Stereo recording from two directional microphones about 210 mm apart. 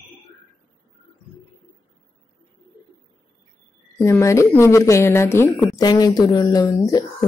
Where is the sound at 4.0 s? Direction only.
15° left (ahead or behind).